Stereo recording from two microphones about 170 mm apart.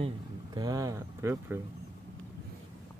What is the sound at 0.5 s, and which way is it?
Speech, 20° right (ahead or behind).